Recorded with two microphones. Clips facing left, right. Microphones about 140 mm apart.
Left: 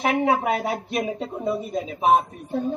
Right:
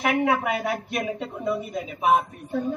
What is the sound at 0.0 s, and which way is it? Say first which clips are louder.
A woman's voice: left 1 dB; 30° left (ahead or behind).